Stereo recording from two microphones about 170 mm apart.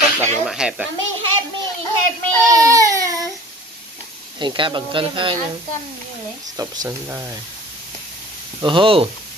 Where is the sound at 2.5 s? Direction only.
20° right (ahead or behind).